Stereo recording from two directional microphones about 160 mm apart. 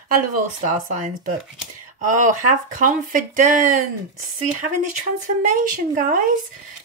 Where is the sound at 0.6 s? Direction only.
50° right (ahead or behind).